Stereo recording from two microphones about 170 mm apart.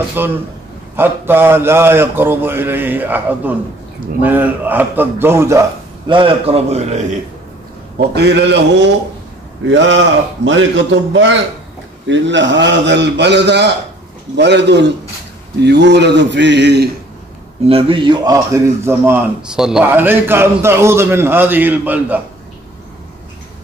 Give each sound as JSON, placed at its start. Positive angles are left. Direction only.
{"t": 0.2, "sound": "a man's voice", "side_deg": -15}
{"t": 6.0, "sound": "a man's voice", "side_deg": -30}
{"t": 8.1, "sound": "a man's voice", "side_deg": -85}
{"t": 17.6, "sound": "a man's voice", "side_deg": -35}